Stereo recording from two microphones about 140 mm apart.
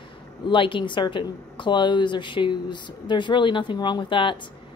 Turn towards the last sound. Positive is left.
turn(degrees=35)  # may be behind; listen again after turning